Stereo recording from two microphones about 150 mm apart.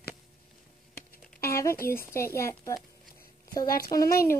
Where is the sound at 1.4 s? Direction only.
20° left (ahead or behind).